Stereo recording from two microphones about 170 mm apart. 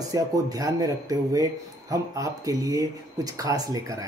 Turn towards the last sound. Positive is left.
turn(degrees=-20)  # may be behind; listen again after turning